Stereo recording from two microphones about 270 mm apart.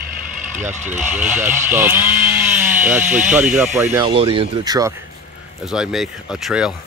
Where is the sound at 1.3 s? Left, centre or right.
Centre.